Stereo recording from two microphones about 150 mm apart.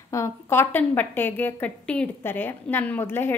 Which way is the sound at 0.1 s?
15° left (ahead or behind).